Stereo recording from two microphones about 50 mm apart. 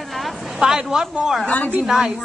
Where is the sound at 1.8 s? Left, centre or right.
Centre.